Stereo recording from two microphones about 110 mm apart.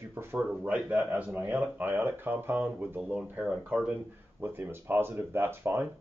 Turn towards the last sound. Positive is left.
turn(degrees=-20)  # may be behind; listen again after turning